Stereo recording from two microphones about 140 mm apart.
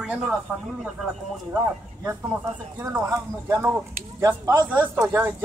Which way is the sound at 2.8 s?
20° right (ahead or behind).